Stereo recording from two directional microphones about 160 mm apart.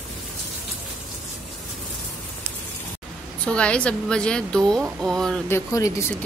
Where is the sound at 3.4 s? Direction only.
5° left (ahead or behind).